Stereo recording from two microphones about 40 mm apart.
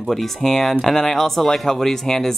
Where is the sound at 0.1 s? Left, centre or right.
Centre.